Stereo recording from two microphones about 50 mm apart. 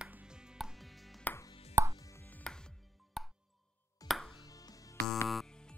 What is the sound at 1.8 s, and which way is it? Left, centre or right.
Chopping, right.